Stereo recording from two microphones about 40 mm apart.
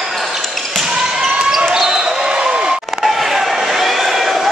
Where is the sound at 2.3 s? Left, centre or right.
Right.